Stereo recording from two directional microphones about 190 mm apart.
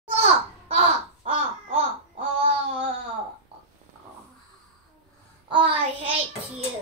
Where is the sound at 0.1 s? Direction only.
30° right (ahead or behind).